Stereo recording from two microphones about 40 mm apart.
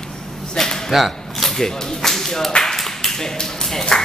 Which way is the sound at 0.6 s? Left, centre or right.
Centre.